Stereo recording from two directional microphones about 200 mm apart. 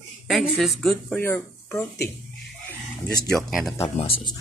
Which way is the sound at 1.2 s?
15° left (ahead or behind).